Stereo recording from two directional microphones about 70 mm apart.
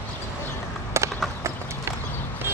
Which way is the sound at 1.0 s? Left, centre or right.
Right.